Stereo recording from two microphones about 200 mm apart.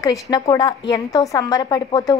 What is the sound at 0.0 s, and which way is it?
A woman's voice, 20° left (ahead or behind).